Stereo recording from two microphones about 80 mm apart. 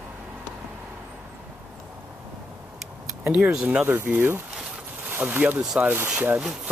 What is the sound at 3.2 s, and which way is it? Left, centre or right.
Speech, centre.